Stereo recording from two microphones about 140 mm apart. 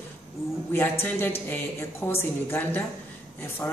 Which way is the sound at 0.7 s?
15° left (ahead or behind).